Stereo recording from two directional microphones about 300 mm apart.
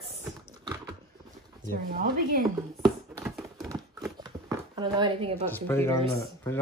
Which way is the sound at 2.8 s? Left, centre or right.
Centre.